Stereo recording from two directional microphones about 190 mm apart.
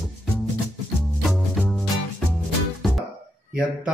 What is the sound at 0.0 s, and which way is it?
Music, centre (ahead or behind).